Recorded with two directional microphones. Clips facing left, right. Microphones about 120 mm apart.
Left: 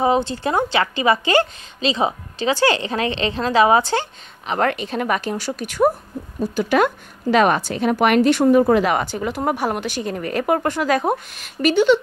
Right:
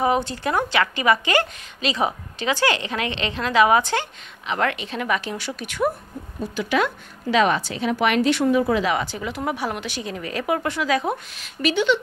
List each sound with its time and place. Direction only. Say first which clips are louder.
0.0 s a woman's voice: left 3 dB; 25° left (ahead or behind)